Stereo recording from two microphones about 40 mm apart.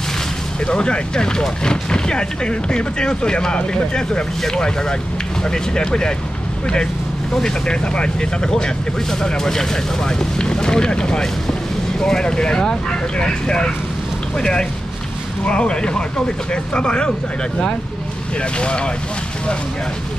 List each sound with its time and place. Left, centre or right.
0.7 s speech: left
7.3 s speech: centre
18.4 s speech: left